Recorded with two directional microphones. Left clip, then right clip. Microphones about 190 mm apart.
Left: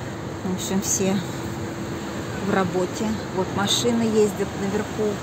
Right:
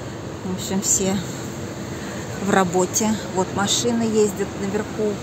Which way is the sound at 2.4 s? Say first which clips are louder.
Right 4 dB; 15° right (ahead or behind).